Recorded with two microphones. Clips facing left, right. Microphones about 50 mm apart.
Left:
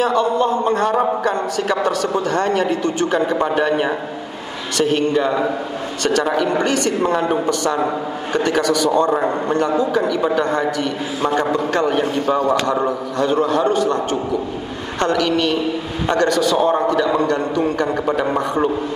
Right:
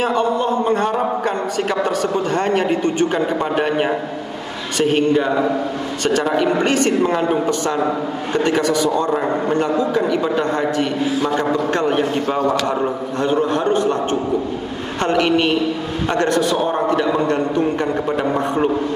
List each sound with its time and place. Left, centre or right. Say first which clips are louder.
0.0 s a man's voice: left 1 dB; right
1.2 s a sound: left 1 dB; right
1.9 s a man's voice: even; left
2.4 s a man's voice: right 1 dB; right
8.3 s a man's voice: even; right
8.8 s a man's voice: left 2 dB; left
11.7 s a man's voice: even; right
15.0 s a man's voice: right 2 dB; right